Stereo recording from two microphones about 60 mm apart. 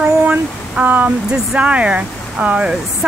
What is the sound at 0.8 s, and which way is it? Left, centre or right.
Speech, right.